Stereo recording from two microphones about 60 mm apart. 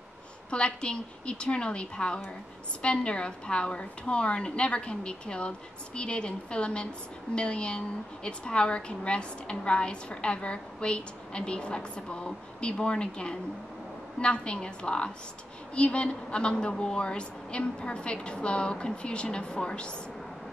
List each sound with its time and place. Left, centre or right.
0.5 s a woman's voice: centre